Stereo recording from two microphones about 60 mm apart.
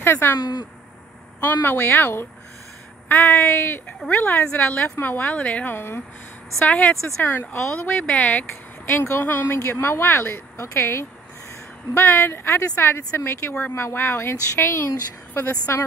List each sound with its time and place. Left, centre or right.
0.0 s a woman's voice: left
1.4 s a woman's voice: left
5.4 s speech: left
5.7 s a woman's voice: left
7.2 s a woman's voice: left
7.5 s speech: left
8.0 s speech: left
8.9 s a woman's voice: left
9.6 s speech: left